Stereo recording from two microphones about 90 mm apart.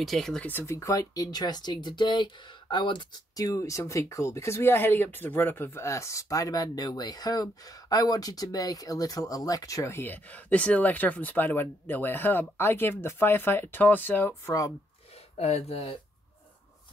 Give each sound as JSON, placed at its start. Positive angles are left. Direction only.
{"t": 0.0, "sound": "speech", "side_deg": 5}
{"t": 0.4, "sound": "speech", "side_deg": 25}
{"t": 3.3, "sound": "speech", "side_deg": 40}
{"t": 9.9, "sound": "speech", "side_deg": 20}
{"t": 15.7, "sound": "speech", "side_deg": 90}